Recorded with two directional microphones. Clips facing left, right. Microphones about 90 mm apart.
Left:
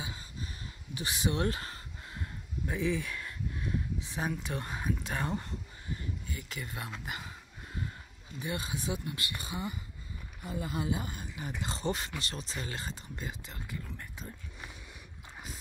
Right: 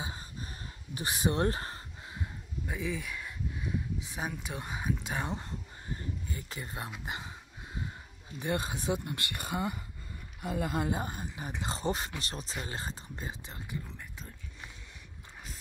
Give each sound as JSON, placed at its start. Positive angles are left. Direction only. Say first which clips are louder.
{"t": 0.0, "sound": "a sound", "louder": "right 1 dB", "side_deg": -40}
{"t": 0.9, "sound": "speech", "louder": "right 2 dB", "side_deg": -40}
{"t": 2.6, "sound": "speech", "louder": "left 4 dB", "side_deg": -5}
{"t": 5.9, "sound": "a sound", "louder": "right 3 dB", "side_deg": -30}
{"t": 7.1, "sound": "speech", "louder": "right 1 dB", "side_deg": -25}
{"t": 8.4, "sound": "speech", "louder": "right 3 dB", "side_deg": -50}
{"t": 10.4, "sound": "speech", "louder": "right 4 dB", "side_deg": -65}
{"t": 11.0, "sound": "speech", "louder": "right 3 dB", "side_deg": -35}